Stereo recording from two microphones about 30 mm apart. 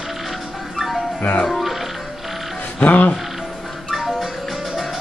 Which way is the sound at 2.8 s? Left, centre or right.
Left.